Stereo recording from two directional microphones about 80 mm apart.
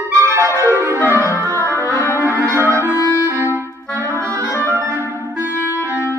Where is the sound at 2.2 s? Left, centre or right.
Right.